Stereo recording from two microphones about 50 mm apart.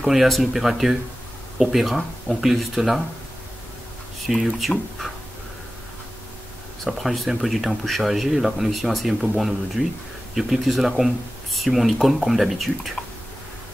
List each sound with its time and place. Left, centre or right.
0.0 s speech: centre
4.6 s speech: centre
6.8 s speech: centre